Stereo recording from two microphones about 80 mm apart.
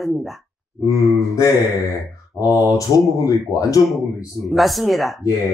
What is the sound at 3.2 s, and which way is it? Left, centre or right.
Speech, left.